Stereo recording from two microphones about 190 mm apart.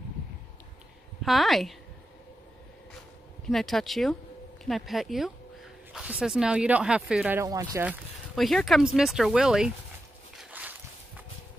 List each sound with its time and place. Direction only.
1.2 s speech: centre (ahead or behind)
3.4 s speech: centre (ahead or behind)
8.4 s speech: centre (ahead or behind)
10.3 s walk: 5° right (ahead or behind)